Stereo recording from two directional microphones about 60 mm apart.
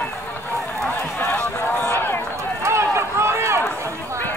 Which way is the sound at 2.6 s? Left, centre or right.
Right.